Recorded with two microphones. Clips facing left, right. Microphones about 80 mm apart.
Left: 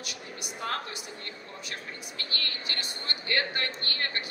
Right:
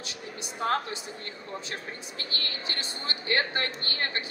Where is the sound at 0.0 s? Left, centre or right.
Right.